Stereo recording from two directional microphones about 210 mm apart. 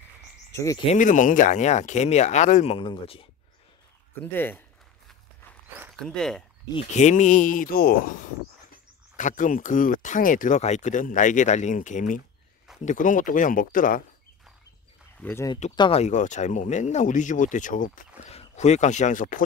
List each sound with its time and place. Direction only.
0.5 s speech: 15° left (ahead or behind)
0.8 s speech: 35° left (ahead or behind)
4.2 s speech: 10° left (ahead or behind)
6.0 s speech: 5° left (ahead or behind)
6.7 s speech: 30° left (ahead or behind)
9.1 s speech: 35° left (ahead or behind)
15.2 s speech: 15° left (ahead or behind); by 19.4 s 40° left (ahead or behind)